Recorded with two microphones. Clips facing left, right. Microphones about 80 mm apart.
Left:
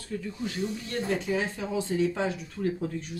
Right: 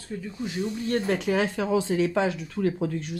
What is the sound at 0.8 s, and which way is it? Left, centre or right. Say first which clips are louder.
Speech: right 6 dB; right.